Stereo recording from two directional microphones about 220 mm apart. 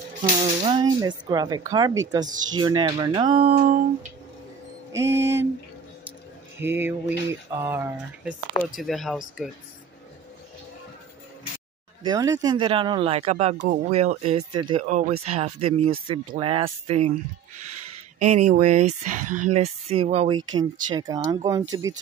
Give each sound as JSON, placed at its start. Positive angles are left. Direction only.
{"t": 0.2, "sound": "speech", "side_deg": -25}
{"t": 3.5, "sound": "speech", "side_deg": -35}
{"t": 4.9, "sound": "speech", "side_deg": -10}
{"t": 6.6, "sound": "speech", "side_deg": -10}
{"t": 12.0, "sound": "speech", "side_deg": -15}
{"t": 18.2, "sound": "speech", "side_deg": -30}